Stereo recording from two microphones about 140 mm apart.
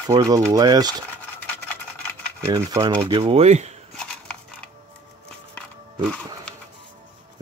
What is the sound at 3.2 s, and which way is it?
Speech, 45° right (ahead or behind).